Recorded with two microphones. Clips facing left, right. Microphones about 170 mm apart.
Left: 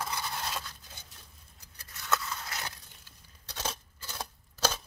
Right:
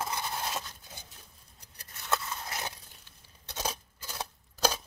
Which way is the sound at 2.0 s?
25° right (ahead or behind).